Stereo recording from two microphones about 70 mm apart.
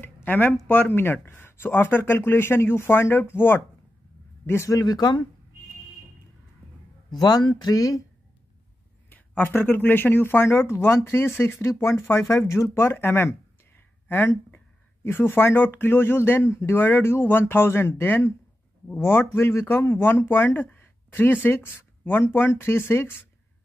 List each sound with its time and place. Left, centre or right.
0.0 s a sound: left
0.7 s speech: left
4.8 s speech: left
7.1 s speech: left
9.1 s speech: left